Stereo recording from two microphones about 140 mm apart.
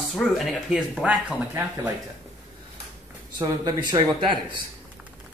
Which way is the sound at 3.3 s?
30° right (ahead or behind).